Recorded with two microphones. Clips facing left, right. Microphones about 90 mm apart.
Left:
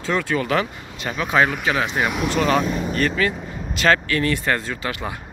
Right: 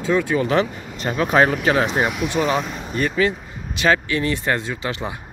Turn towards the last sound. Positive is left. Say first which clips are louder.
# right 1 dB
turn(degrees=-25)  # may be behind; listen again after turning